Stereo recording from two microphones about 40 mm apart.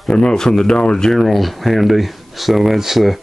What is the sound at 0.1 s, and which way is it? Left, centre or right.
Speech, left.